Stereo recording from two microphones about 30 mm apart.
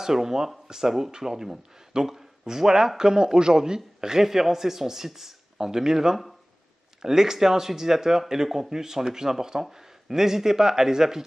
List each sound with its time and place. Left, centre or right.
0.0 s a man's voice: centre